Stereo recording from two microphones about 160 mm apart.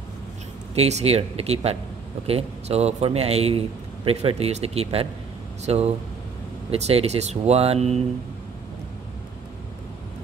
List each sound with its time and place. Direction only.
0.7 s a man's voice: 40° right (ahead or behind)